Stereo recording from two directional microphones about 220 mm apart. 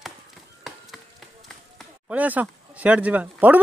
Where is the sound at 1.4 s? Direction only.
Centre (ahead or behind).